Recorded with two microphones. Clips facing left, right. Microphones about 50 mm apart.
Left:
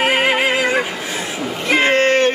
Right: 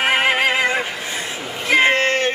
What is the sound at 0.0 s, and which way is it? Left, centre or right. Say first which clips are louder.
Neigh: left 1 dB; centre.